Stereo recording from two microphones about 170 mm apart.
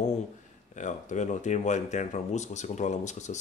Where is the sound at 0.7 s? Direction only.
45° left (ahead or behind).